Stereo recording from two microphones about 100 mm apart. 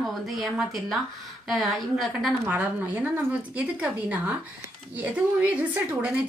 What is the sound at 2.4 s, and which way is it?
A woman's voice, 20° right (ahead or behind).